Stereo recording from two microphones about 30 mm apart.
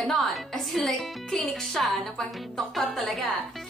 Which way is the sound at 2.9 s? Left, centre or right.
Centre.